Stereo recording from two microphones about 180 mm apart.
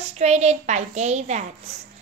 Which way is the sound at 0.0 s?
40° right (ahead or behind).